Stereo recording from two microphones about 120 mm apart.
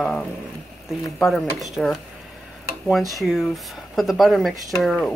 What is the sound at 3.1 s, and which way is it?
Speech, centre (ahead or behind).